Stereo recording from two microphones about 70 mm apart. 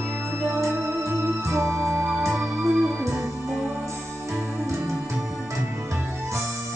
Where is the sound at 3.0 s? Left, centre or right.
Right.